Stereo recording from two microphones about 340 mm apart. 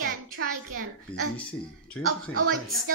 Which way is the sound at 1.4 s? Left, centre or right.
Centre.